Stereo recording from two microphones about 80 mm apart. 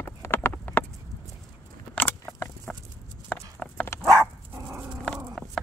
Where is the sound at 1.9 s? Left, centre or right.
Left.